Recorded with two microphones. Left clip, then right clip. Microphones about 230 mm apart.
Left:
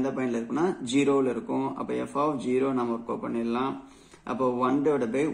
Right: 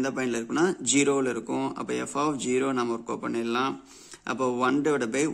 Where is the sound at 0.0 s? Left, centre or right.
Right.